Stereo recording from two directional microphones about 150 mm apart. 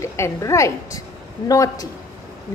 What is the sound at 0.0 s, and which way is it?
A woman's voice, 20° left (ahead or behind).